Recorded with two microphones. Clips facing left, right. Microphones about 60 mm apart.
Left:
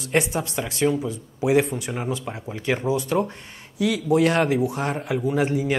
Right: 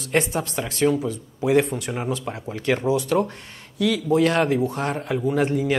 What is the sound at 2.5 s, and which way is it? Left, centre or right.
Speech, centre.